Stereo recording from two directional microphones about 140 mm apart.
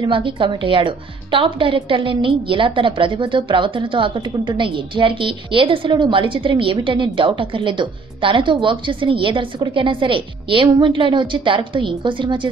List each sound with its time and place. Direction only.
0.0 s a woman's voice: 35° right (ahead or behind)